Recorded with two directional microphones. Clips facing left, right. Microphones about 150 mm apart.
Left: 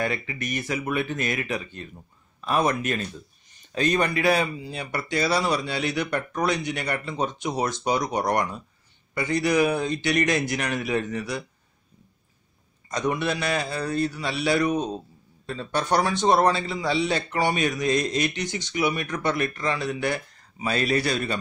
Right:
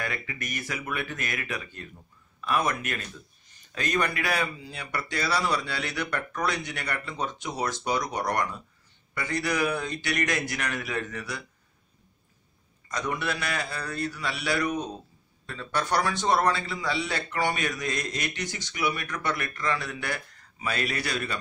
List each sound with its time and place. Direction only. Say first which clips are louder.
0.0 s speech: left 6 dB; 25° left (ahead or behind)
12.8 s speech: left 5 dB; 25° left (ahead or behind)